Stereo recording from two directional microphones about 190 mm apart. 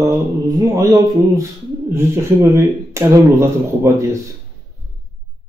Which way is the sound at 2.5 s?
15° right (ahead or behind).